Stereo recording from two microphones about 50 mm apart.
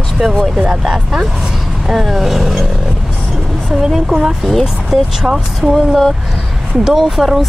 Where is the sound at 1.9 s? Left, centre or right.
Centre.